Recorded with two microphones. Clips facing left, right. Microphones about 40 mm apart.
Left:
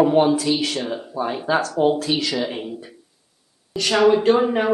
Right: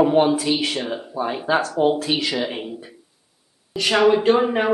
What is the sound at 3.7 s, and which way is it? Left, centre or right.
Speech, centre.